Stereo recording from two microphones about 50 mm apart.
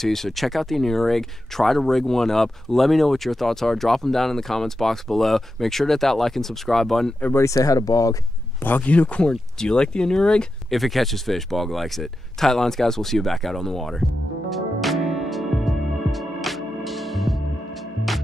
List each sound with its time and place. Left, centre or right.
0.0 s speech: centre
7.3 s speech: left
8.6 s speech: left; by 10.4 s centre
10.7 s speech: centre
14.5 s music: centre